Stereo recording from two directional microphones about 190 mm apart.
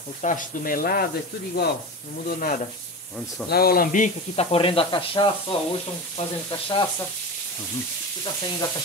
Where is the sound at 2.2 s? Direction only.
45° left (ahead or behind).